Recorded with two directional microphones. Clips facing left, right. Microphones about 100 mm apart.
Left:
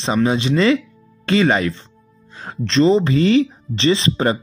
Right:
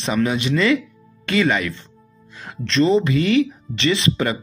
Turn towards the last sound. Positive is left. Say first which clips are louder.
# left 3 dB
turn(degrees=30)  # may be behind; listen again after turning